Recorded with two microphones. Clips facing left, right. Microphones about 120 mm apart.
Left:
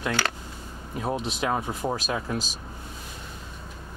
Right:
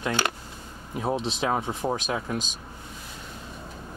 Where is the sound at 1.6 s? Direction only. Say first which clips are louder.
Right 1 dB; centre (ahead or behind).